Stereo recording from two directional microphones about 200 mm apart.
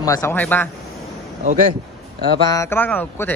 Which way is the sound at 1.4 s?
40° right (ahead or behind).